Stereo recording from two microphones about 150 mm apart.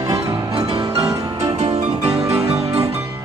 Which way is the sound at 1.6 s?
50° right (ahead or behind).